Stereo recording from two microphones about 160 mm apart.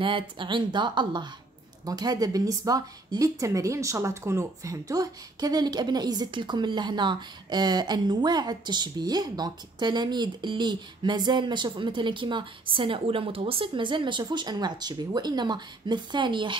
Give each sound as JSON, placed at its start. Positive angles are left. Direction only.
{"t": 0.0, "sound": "speech", "side_deg": -30}